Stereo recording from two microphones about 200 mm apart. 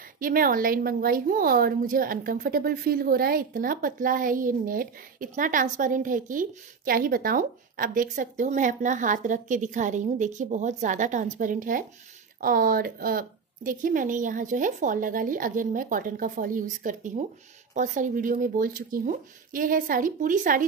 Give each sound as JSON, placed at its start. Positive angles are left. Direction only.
{"t": 0.2, "sound": "a woman's voice", "side_deg": -45}